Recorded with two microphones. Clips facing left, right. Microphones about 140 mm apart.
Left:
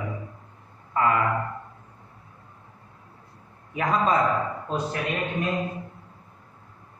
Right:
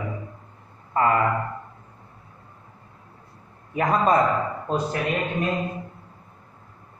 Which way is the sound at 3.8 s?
35° right (ahead or behind).